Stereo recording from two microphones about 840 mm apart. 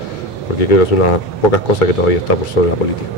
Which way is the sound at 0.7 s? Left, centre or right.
Left.